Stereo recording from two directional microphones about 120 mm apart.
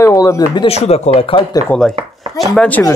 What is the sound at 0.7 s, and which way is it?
Speech, 60° left (ahead or behind).